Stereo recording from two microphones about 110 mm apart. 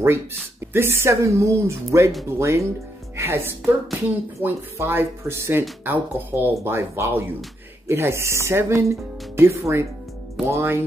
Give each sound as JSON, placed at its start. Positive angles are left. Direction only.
{"t": 0.0, "sound": "speech", "side_deg": -20}